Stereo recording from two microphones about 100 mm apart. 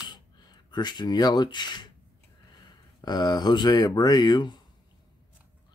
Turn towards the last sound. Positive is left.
turn(degrees=45)  # may be behind; listen again after turning